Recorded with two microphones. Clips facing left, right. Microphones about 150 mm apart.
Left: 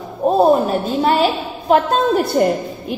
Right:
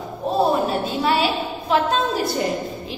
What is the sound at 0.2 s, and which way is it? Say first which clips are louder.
A woman's voice: left 6 dB; 45° left (ahead or behind).